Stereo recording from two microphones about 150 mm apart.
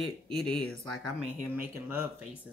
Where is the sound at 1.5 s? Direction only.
15° right (ahead or behind).